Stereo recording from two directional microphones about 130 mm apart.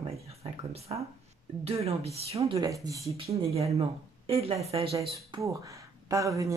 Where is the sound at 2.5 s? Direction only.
25° right (ahead or behind).